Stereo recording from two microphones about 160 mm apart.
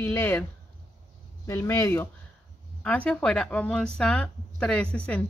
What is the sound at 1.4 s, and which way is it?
Speech, 15° left (ahead or behind).